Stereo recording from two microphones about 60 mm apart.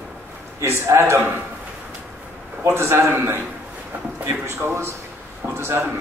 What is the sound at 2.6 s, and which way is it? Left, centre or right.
A man's voice, right.